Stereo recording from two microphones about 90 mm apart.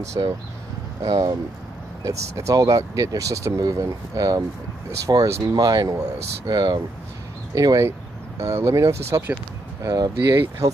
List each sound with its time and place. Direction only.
0.0 s speech: 35° right (ahead or behind); by 6.8 s 50° right (ahead or behind)
7.5 s speech: 40° right (ahead or behind)
9.8 s speech: 45° right (ahead or behind)